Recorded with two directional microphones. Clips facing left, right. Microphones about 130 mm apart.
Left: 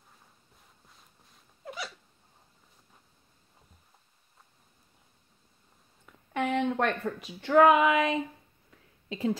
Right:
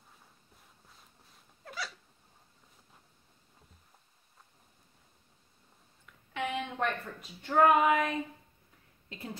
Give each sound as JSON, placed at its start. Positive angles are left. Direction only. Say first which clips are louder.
{"t": 1.6, "sound": "dog", "louder": "left 2 dB", "side_deg": 20}
{"t": 6.3, "sound": "speech", "louder": "left 7 dB", "side_deg": 70}